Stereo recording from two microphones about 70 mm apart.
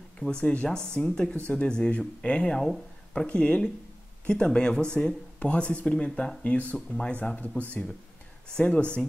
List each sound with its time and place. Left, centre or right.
0.2 s speech: centre
8.5 s speech: centre